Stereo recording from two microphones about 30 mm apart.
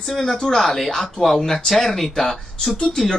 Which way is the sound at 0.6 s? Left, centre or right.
Centre.